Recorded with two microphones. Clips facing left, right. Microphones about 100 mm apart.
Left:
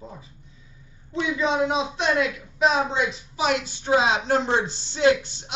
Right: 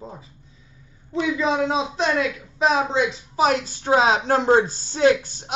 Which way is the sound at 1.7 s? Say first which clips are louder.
Right 1 dB; 35° right (ahead or behind).